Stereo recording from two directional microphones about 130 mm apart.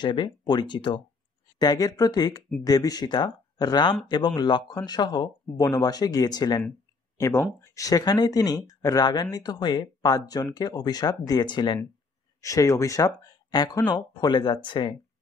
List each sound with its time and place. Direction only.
0.0 s speech: 35° left (ahead or behind)
12.4 s speech: 25° left (ahead or behind)